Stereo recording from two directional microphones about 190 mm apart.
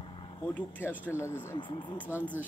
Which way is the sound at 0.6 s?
10° left (ahead or behind).